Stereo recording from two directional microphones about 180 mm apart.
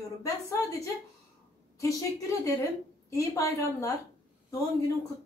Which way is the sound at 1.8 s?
15° left (ahead or behind).